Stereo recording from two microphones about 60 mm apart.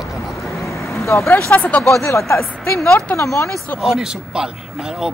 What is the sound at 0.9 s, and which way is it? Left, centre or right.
Vehicle, left.